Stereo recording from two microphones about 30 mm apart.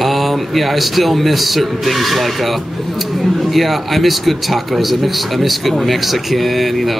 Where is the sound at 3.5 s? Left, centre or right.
Centre.